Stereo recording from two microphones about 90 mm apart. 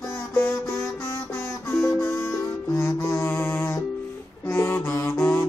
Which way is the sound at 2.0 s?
25° left (ahead or behind).